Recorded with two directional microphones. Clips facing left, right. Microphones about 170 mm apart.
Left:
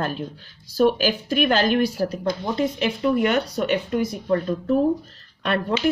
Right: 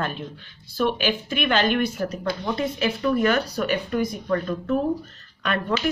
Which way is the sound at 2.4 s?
25° left (ahead or behind).